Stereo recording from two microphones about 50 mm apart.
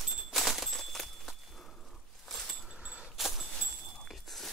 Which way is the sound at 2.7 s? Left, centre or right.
Right.